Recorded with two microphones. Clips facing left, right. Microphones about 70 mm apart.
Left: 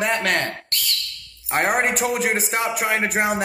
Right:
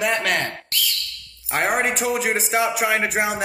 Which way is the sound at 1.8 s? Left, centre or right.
Left.